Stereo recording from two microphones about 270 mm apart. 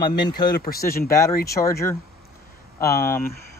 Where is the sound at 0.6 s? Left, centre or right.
Left.